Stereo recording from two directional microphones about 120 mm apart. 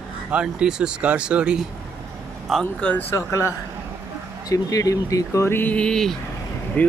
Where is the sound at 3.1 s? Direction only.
25° left (ahead or behind).